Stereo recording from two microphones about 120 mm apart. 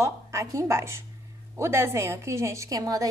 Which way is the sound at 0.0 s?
25° right (ahead or behind).